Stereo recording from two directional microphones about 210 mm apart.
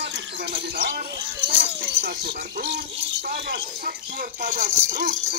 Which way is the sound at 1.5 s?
50° right (ahead or behind).